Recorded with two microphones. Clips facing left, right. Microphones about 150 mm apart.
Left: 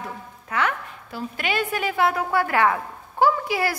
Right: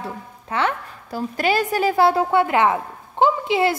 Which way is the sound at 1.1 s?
40° right (ahead or behind).